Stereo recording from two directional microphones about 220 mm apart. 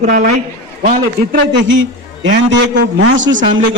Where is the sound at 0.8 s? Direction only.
35° right (ahead or behind).